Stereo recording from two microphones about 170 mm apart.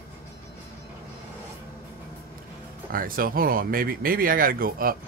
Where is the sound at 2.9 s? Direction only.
55° right (ahead or behind).